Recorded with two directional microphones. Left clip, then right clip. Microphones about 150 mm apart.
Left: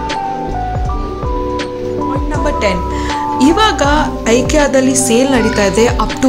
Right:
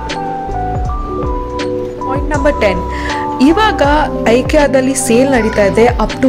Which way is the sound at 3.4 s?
30° right (ahead or behind).